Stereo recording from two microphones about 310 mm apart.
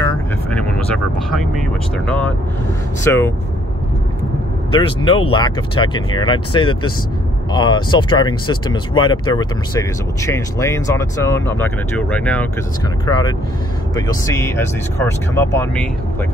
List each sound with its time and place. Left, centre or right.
0.0 s vehicle: centre
2.0 s speech: centre
4.7 s speech: centre